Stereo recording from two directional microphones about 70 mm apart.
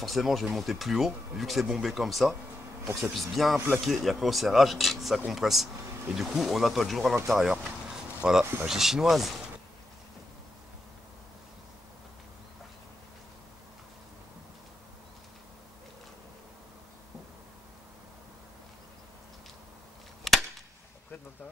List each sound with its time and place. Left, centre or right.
0.0 s speech: centre
3.5 s speech: right
3.8 s speech: centre
7.5 s a sound: centre
8.6 s speech: centre
20.3 s cap gun: centre